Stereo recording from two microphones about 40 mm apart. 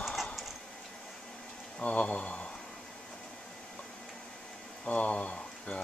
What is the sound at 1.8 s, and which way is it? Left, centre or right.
Speech, left.